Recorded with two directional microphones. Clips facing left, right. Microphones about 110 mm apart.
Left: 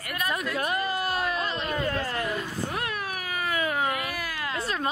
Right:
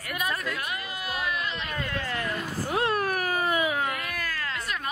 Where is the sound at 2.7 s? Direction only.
30° right (ahead or behind).